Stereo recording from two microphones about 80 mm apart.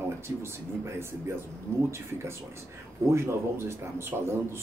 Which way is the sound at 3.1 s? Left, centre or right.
Right.